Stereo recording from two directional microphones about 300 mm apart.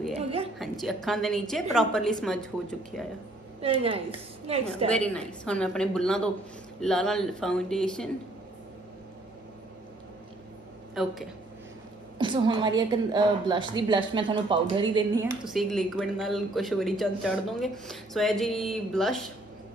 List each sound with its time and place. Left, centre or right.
0.2 s a sound: centre
0.6 s speech: centre
3.6 s a woman's voice: centre
4.9 s speech: centre
11.0 s speech: centre
12.2 s a woman's voice: centre
15.4 s speech: centre